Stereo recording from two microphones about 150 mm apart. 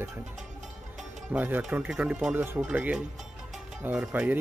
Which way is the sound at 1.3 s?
10° right (ahead or behind).